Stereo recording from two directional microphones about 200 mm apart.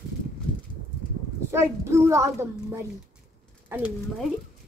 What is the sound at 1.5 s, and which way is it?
Speech, 15° right (ahead or behind).